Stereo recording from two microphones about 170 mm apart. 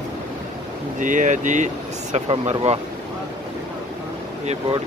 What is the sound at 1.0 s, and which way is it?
Speech, 50° right (ahead or behind).